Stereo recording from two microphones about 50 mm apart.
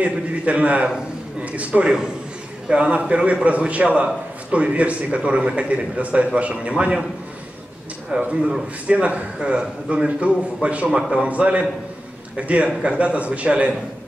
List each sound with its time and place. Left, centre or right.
0.0 s a man's voice: right
8.1 s a man's voice: right